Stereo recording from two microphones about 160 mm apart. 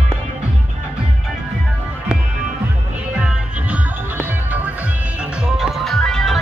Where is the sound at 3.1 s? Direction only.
5° right (ahead or behind).